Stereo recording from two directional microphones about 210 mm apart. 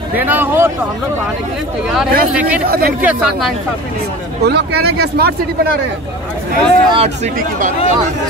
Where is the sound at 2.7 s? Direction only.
45° right (ahead or behind).